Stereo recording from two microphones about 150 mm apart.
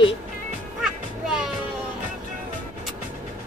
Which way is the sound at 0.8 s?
5° right (ahead or behind).